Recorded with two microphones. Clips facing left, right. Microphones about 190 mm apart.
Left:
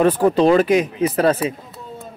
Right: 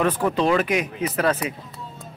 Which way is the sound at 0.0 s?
35° left (ahead or behind).